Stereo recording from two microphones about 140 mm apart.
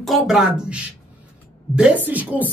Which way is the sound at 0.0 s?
Centre (ahead or behind).